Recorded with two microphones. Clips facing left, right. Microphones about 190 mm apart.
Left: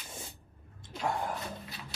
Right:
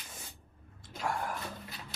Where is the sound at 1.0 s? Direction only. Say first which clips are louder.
Left 2 dB; 20° left (ahead or behind).